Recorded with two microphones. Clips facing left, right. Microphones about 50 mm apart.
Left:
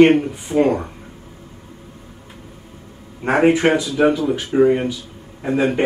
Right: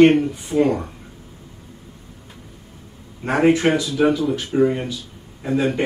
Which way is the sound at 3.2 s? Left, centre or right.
Left.